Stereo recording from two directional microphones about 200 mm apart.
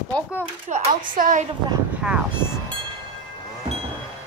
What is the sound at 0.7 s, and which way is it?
Speech, 40° right (ahead or behind).